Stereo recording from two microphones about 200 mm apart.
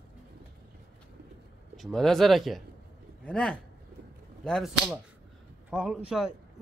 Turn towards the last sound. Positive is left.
turn(degrees=0)  # may be behind; listen again after turning